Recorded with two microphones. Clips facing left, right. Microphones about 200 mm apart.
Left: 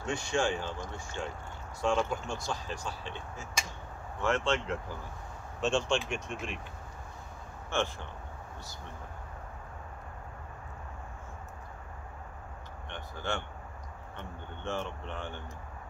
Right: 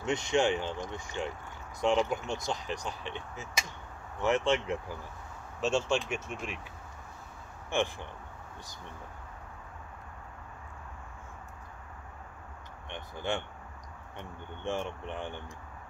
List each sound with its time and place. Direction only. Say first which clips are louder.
0.0 s speech: right 3 dB; 20° right (ahead or behind); by 6.6 s 5° right (ahead or behind)
7.7 s speech: right 2 dB; 15° right (ahead or behind)
12.9 s speech: right 2 dB; 15° right (ahead or behind)